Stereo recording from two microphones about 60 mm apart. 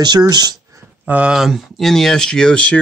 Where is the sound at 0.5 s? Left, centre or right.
Right.